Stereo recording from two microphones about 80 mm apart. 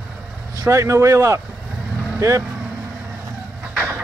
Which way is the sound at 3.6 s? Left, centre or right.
Right.